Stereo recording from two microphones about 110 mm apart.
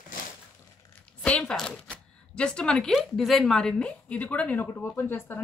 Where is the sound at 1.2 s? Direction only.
5° left (ahead or behind).